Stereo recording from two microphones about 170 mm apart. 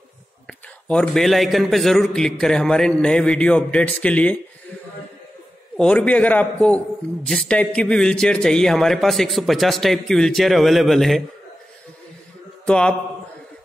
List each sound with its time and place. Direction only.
0.5 s speech: 5° left (ahead or behind)
5.8 s a man's voice: 5° left (ahead or behind)
12.6 s a man's voice: 5° left (ahead or behind)